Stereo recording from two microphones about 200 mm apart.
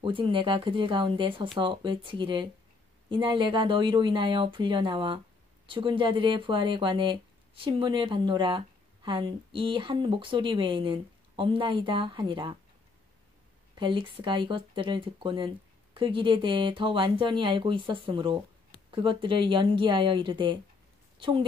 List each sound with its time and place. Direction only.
0.0 s speech: 25° right (ahead or behind)
13.7 s speech: 25° right (ahead or behind)